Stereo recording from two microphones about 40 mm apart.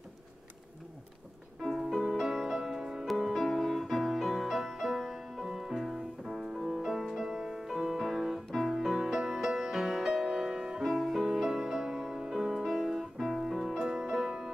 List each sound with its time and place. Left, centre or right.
1.8 s music: centre
8.1 s piano: centre
8.5 s music: centre
13.7 s music: centre